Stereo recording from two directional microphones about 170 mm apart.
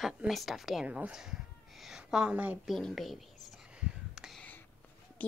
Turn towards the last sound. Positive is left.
turn(degrees=10)  # may be behind; listen again after turning